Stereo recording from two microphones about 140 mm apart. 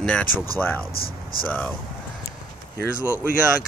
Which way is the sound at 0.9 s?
90° left.